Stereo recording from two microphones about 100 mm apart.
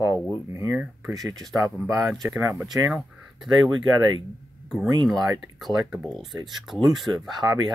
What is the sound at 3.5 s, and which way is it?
Speech, 50° right (ahead or behind).